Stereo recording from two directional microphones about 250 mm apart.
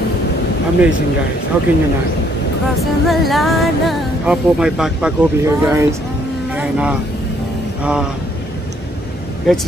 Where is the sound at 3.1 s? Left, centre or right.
Centre.